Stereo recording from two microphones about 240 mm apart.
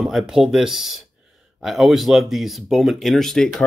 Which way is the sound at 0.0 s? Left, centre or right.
Centre.